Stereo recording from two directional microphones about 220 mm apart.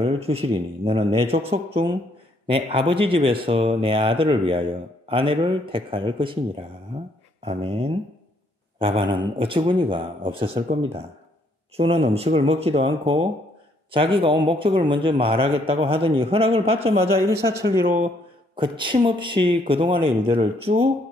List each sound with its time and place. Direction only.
0.0 s a man's voice: 25° right (ahead or behind)
11.7 s speech: 25° right (ahead or behind)
18.6 s speech: 20° right (ahead or behind)